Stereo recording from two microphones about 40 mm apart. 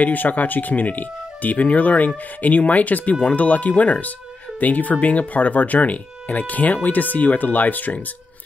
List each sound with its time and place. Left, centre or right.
0.0 s speech: left